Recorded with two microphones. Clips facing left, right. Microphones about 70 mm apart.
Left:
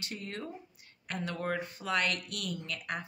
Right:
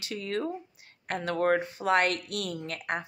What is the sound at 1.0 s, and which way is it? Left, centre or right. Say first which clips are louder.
Speech: right 8 dB; right.